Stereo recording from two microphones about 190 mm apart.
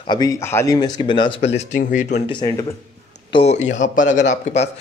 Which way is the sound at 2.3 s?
20° left (ahead or behind).